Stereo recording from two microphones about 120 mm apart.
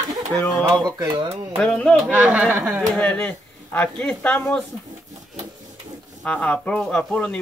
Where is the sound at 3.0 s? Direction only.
10° left (ahead or behind).